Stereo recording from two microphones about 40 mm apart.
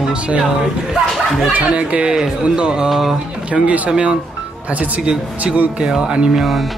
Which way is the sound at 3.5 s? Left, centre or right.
Right.